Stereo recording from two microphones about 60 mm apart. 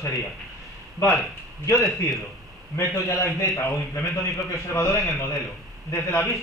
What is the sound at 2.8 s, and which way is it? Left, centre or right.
A man's voice, left.